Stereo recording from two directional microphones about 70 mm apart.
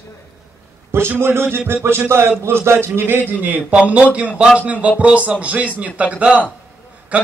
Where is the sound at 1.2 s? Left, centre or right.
Right.